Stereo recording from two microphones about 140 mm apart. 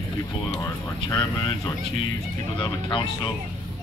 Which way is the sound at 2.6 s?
35° left (ahead or behind).